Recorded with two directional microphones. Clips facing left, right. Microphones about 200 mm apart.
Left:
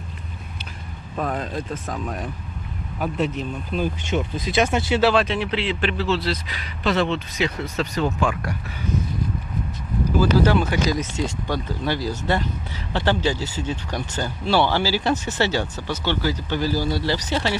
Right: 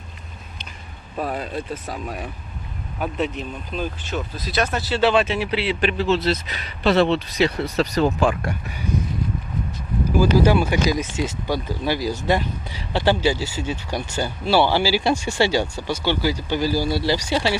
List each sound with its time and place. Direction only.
1.1 s speech: 10° right (ahead or behind)
3.7 s speech: 15° left (ahead or behind)
5.1 s speech: 5° right (ahead or behind); by 8.5 s 30° right (ahead or behind)
10.1 s speech: 10° right (ahead or behind)